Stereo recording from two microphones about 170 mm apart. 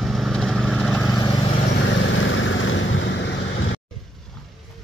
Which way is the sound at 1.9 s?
90° left.